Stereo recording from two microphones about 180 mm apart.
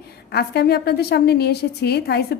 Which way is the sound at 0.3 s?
65° left (ahead or behind).